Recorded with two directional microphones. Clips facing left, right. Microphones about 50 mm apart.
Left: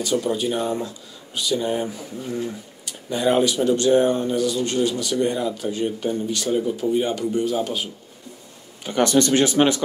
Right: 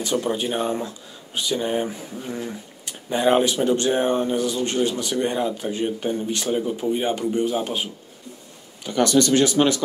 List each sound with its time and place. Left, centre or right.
0.0 s speech: right
8.8 s speech: left